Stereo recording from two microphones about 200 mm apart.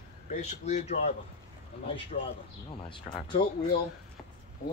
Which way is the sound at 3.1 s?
25° left (ahead or behind).